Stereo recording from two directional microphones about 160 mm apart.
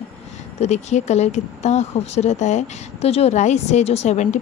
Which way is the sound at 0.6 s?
45° left (ahead or behind).